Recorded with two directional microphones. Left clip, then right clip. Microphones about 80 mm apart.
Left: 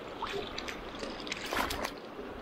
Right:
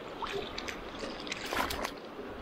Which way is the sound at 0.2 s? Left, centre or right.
Right.